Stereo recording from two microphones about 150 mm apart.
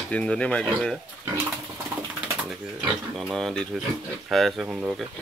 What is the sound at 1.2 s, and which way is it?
Pigeon, 15° right (ahead or behind).